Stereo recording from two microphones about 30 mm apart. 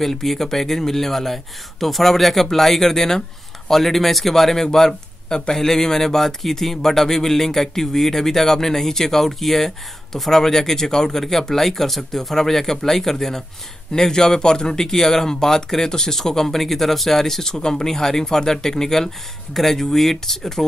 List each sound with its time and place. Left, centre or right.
0.0 s speech: centre